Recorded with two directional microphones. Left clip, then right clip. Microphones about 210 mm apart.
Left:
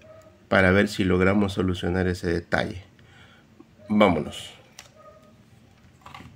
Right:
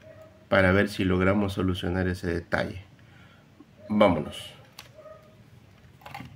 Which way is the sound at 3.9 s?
25° left (ahead or behind).